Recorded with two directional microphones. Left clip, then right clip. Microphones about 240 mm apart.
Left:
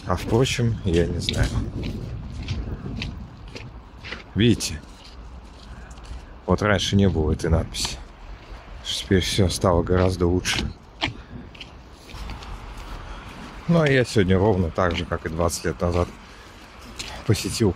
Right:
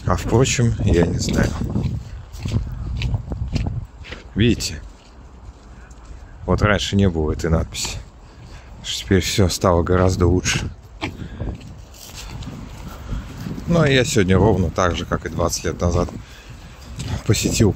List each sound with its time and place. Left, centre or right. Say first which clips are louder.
0.0 s speech: right 3 dB; centre
2.4 s a sound: right 7 dB; right
3.5 s a sound: right 8 dB; centre
6.4 s speech: right 2 dB; centre
13.7 s speech: right 3 dB; centre
17.3 s speech: right 4 dB; centre